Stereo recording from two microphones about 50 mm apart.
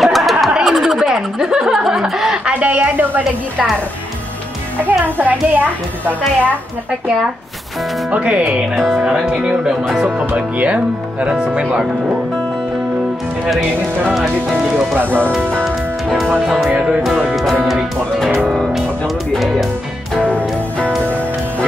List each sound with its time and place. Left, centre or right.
0.0 s a sound: centre
0.7 s snicker: centre
2.3 s a sound: centre
2.7 s a child's voice: right
5.0 s a child's voice: right
8.1 s speech: right
8.7 s speech: centre
9.0 s speech: centre
13.6 s speech: right
16.2 s speech: centre
17.3 s music: centre
19.3 s speech: centre